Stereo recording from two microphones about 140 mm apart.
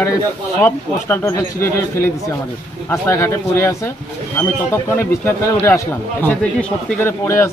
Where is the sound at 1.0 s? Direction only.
15° left (ahead or behind).